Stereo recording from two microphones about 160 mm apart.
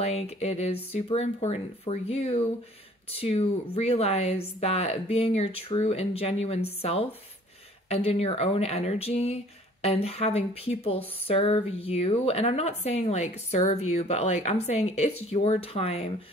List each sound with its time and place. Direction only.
0.0 s a woman's voice: 40° left (ahead or behind)